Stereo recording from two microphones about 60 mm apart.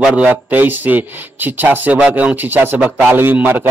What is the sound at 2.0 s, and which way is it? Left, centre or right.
A man's voice, right.